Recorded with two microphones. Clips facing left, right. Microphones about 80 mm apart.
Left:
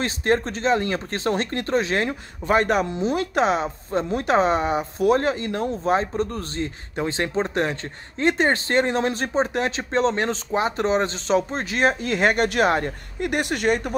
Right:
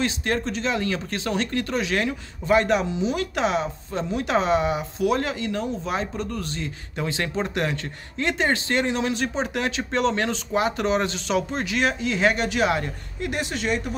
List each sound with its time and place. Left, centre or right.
0.0 s speech: left